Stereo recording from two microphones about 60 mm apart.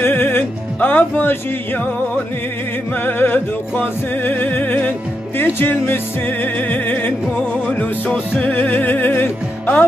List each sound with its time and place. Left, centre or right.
0.0 s music: left
3.0 s music: left